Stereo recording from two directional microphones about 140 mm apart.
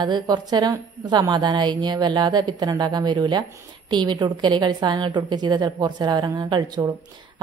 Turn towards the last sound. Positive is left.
turn(degrees=-30)  # may be behind; listen again after turning